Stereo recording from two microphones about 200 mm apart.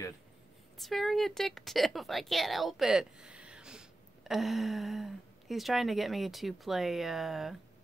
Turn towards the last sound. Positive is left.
turn(degrees=0)  # may be behind; listen again after turning